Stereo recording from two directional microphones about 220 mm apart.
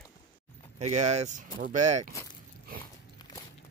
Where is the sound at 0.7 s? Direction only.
30° right (ahead or behind).